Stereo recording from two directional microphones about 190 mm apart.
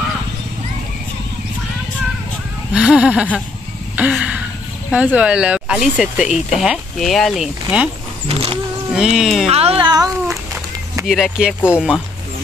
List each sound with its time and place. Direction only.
2.7 s speech: 5° right (ahead or behind)
3.9 s a sound: 5° right (ahead or behind)
4.9 s speech: 5° right (ahead or behind)
8.3 s vehicle: 30° right (ahead or behind)
8.9 s speech: 5° right (ahead or behind)
9.5 s speech: 30° right (ahead or behind)
10.3 s a sound: 15° right (ahead or behind)
11.1 s speech: centre (ahead or behind)